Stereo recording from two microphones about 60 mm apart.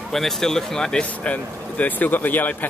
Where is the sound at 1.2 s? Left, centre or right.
Left.